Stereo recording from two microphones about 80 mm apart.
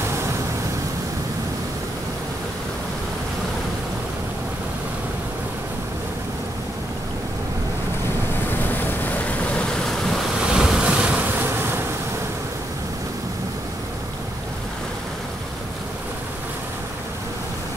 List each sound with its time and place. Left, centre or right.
8.5 s waves: left; by 10.1 s centre
10.4 s vehicle: centre
11.3 s bee: right